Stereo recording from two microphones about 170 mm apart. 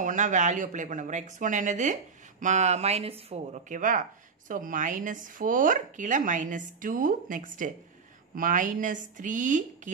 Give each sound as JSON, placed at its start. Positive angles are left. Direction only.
{"t": 0.0, "sound": "speech", "side_deg": -50}